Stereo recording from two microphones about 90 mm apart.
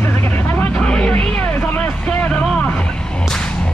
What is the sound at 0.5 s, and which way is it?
Vehicle, 10° left (ahead or behind).